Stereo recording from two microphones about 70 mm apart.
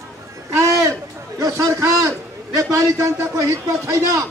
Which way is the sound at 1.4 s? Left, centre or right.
Right.